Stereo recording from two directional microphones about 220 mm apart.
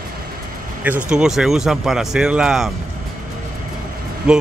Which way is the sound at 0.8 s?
5° right (ahead or behind).